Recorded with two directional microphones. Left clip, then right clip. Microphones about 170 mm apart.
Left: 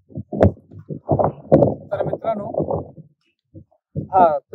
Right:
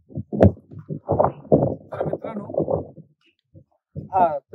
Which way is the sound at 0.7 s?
20° left (ahead or behind).